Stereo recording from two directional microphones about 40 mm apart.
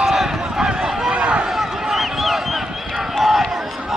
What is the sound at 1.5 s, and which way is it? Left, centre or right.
Run, centre.